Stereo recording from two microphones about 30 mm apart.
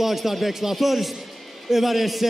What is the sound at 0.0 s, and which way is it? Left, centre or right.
A man's voice, centre.